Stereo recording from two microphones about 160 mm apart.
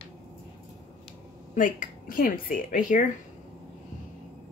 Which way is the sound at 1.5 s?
55° left (ahead or behind).